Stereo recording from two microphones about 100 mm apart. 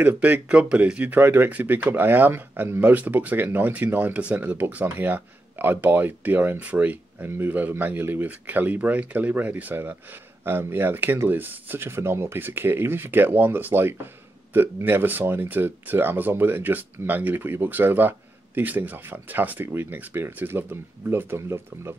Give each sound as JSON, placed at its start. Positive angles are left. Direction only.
{"t": 0.0, "sound": "speech", "side_deg": -15}